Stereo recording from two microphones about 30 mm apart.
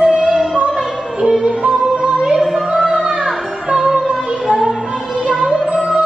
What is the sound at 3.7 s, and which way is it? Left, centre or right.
Music, right.